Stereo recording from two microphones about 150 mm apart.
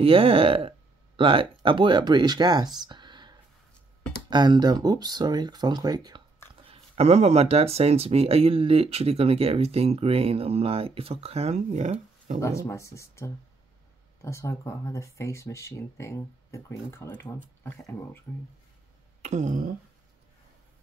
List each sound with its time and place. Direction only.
0.0 s speech: 40° right (ahead or behind)
2.8 s a sound: 30° right (ahead or behind)
4.3 s speech: 30° right (ahead or behind)
6.7 s speech: 45° right (ahead or behind)
12.4 s speech: 20° left (ahead or behind)
19.2 s speech: 55° right (ahead or behind)